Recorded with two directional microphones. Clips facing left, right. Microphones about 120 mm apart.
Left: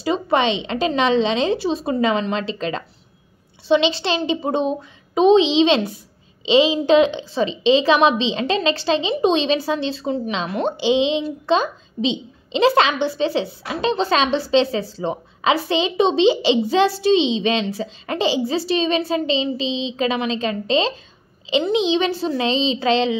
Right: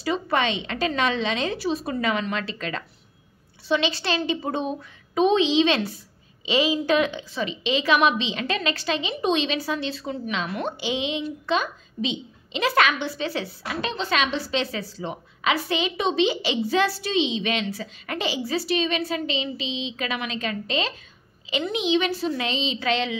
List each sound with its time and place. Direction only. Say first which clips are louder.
0.0 s a woman's voice: left 5 dB; 25° left (ahead or behind)